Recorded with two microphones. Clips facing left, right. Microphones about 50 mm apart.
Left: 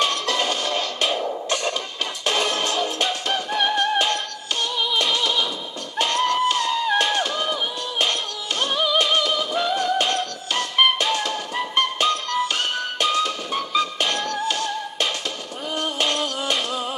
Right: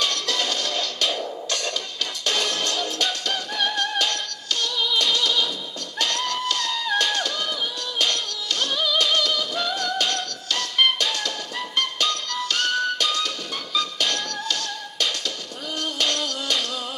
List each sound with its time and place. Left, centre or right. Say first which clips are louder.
0.0 s music: left 3 dB; left
5.9 s a sound: left 6 dB; left
8.0 s music: left 1 dB; left